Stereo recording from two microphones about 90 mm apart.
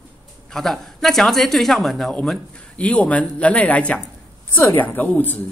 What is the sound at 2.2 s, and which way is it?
A woman's voice, 10° left (ahead or behind).